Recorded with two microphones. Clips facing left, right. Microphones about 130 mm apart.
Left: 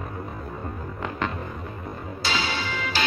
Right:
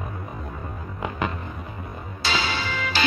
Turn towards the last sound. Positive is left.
turn(degrees=-90)